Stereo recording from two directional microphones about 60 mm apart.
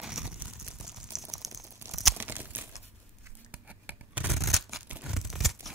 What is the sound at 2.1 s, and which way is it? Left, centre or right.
Crumpling, right.